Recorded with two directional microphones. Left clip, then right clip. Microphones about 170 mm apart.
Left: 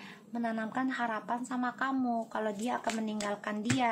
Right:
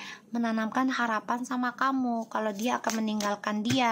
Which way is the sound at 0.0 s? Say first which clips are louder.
Right 4 dB; 35° right (ahead or behind).